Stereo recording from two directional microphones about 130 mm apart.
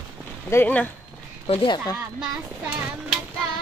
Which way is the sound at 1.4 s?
45° left (ahead or behind).